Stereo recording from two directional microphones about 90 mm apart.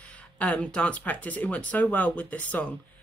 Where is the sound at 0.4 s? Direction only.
15° left (ahead or behind).